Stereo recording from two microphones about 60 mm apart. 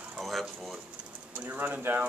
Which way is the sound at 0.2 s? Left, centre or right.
Centre.